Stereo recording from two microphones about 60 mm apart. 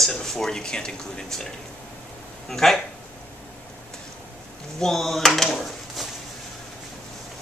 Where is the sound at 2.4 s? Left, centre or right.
Centre.